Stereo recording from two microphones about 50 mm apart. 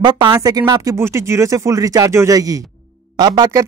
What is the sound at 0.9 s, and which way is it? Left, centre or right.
Speech, right.